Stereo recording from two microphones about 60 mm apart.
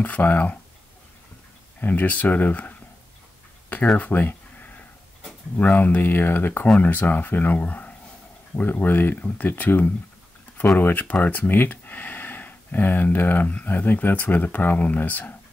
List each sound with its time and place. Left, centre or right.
0.0 s speech: left
1.8 s speech: left
3.7 s a sound: left
5.6 s speech: left